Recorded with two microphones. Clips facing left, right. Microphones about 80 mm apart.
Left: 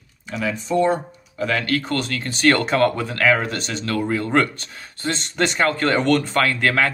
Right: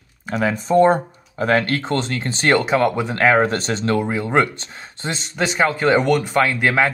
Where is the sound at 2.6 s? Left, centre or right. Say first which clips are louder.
Right 1 dB; centre.